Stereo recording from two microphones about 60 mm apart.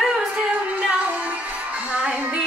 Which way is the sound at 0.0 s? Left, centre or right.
Centre.